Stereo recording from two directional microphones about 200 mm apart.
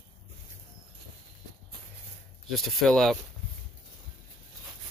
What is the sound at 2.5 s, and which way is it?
Speech, centre (ahead or behind).